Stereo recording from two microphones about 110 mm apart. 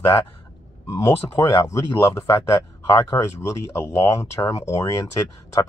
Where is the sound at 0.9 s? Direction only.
25° left (ahead or behind).